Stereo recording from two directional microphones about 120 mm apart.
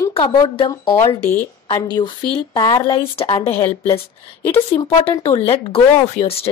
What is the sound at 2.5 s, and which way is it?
Speech, 35° left (ahead or behind).